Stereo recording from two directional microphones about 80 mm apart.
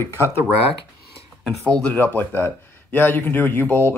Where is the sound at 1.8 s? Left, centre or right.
Left.